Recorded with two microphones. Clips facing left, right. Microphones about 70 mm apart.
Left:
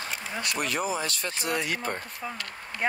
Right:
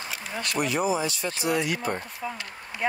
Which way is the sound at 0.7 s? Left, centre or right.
Right.